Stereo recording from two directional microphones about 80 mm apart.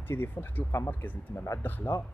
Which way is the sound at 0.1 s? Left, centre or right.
Left.